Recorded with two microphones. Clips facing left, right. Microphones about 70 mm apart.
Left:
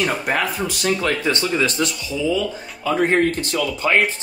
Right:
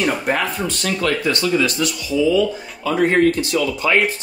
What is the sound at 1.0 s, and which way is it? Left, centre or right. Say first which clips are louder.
Speech: right 2 dB; left.